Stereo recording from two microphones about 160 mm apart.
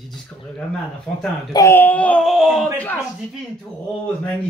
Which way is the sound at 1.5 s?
15° left (ahead or behind).